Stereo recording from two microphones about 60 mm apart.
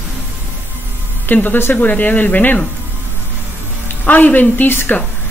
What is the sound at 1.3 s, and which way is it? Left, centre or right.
Speech, left.